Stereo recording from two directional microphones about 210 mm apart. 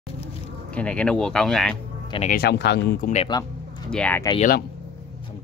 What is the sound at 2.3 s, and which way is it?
Speech, 50° left (ahead or behind).